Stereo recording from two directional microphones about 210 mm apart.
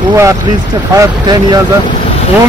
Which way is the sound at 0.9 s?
15° right (ahead or behind).